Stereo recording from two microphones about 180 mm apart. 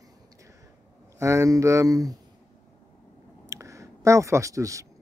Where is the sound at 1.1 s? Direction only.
15° right (ahead or behind).